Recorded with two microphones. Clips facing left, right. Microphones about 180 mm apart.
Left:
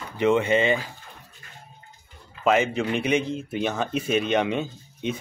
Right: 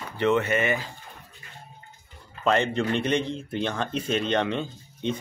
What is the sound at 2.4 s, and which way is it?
A man's voice, 5° left (ahead or behind).